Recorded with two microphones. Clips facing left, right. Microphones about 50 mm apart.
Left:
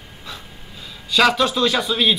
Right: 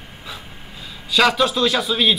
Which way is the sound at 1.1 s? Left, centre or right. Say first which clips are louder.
Even; centre.